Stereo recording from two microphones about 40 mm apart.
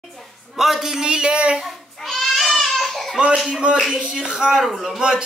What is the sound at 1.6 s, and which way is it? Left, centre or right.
Babbling, centre.